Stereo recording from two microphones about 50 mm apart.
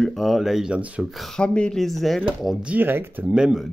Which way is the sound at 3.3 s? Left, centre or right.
Centre.